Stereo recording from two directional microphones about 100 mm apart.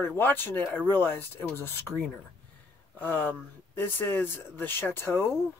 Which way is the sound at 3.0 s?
20° left (ahead or behind).